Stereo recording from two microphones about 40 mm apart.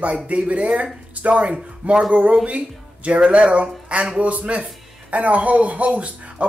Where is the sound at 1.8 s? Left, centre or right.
Right.